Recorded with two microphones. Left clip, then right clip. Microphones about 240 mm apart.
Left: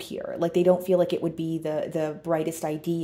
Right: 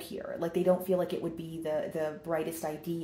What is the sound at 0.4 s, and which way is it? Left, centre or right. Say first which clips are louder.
Speech: left 7 dB; left.